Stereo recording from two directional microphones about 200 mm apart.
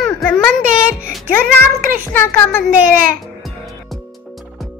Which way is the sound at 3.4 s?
Centre (ahead or behind).